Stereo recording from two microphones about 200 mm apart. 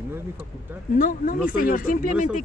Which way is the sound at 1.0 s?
45° left (ahead or behind).